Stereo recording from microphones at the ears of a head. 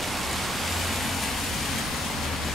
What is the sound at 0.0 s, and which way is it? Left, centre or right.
Rain, centre.